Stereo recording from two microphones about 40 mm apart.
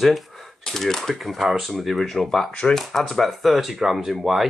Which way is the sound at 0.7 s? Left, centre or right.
Centre.